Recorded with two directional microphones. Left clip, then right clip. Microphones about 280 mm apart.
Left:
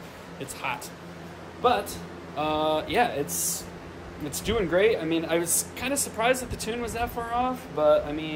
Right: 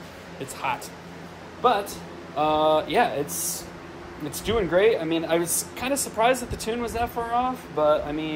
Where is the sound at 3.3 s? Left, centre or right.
Centre.